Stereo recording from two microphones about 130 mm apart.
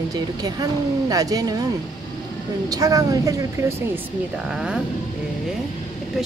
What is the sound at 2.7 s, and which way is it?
Speech, 25° right (ahead or behind).